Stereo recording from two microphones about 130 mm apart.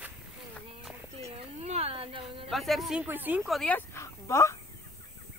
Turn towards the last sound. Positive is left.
turn(degrees=20)  # may be behind; listen again after turning